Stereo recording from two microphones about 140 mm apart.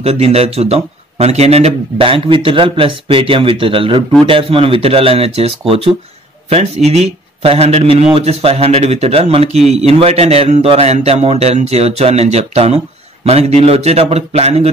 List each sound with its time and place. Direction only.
0.0 s a man's voice: 45° right (ahead or behind)